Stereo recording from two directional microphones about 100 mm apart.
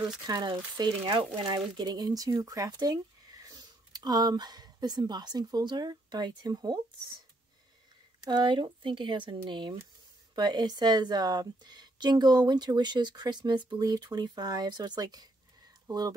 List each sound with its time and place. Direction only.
0.3 s a woman's voice: 45° right (ahead or behind)
1.8 s speech: 40° right (ahead or behind)
8.2 s a woman's voice: 45° right (ahead or behind)